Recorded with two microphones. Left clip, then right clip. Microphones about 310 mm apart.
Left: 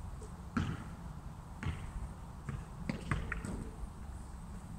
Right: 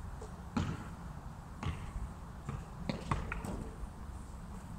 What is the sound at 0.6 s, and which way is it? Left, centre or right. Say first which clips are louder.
Basketball bounce: even; centre.